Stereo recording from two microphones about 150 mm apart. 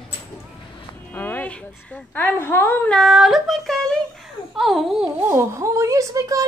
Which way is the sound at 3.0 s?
Centre (ahead or behind).